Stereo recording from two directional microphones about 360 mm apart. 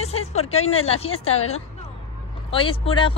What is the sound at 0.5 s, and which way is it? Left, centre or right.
Speech, centre.